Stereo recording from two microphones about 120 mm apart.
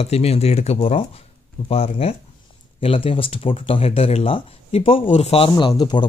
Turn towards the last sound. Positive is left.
turn(degrees=40)  # may be behind; listen again after turning